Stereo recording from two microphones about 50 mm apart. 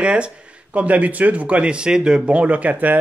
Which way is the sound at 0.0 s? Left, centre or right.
Right.